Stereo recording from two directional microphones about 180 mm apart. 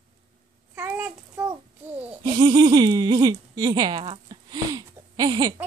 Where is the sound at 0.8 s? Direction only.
10° right (ahead or behind).